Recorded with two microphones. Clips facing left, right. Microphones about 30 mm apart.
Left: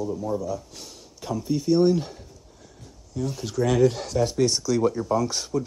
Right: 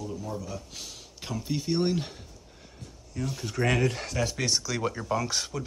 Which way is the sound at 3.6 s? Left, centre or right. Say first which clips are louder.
Left 6 dB; right.